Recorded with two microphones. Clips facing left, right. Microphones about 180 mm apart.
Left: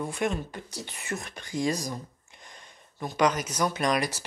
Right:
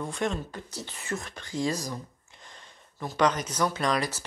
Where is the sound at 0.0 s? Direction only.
10° left (ahead or behind).